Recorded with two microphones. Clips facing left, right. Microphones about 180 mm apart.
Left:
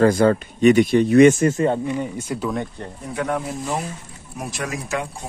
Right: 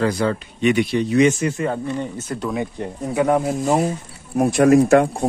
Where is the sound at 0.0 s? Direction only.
50° left (ahead or behind).